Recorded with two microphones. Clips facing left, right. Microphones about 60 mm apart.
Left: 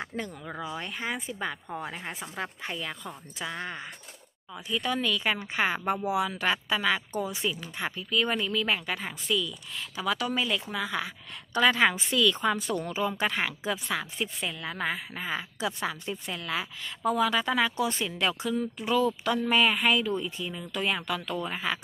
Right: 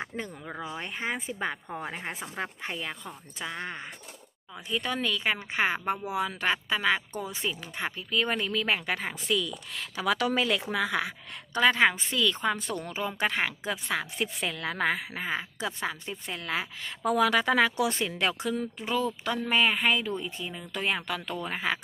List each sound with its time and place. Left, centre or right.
0.0 s speech: centre
0.4 s speech: centre
0.7 s speech: right
3.1 s speech: centre
4.6 s speech: right
5.2 s speech: right
11.5 s a woman's voice: right
15.2 s speech: right
17.1 s a woman's voice: right
18.0 s speech: right
18.8 s speech: right